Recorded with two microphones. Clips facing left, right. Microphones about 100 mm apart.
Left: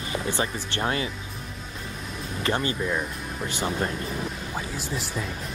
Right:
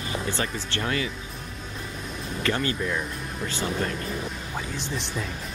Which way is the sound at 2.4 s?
20° left (ahead or behind).